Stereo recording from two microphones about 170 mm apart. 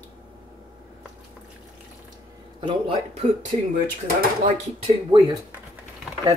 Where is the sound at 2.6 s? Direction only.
30° right (ahead or behind).